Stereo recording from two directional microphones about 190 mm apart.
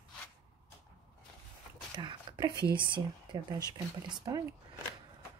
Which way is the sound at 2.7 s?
25° right (ahead or behind).